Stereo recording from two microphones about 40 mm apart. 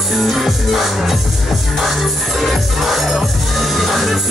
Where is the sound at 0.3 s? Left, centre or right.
Centre.